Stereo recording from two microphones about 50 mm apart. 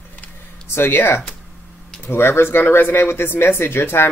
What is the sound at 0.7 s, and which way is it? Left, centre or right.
Speech, left.